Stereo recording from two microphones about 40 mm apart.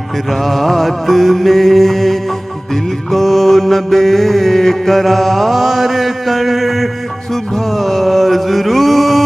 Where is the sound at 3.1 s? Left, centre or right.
Centre.